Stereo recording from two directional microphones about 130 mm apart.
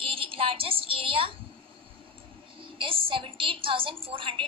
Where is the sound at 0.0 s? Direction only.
45° right (ahead or behind).